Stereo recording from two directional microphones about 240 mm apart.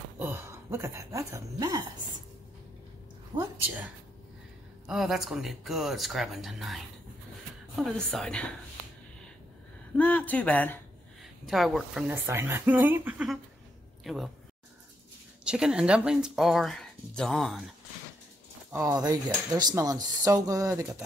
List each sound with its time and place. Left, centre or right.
0.2 s speech: centre
3.3 s speech: centre
9.9 s speech: centre
15.4 s speech: centre
18.7 s speech: centre